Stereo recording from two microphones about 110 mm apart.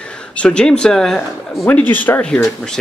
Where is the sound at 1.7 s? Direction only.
15° left (ahead or behind).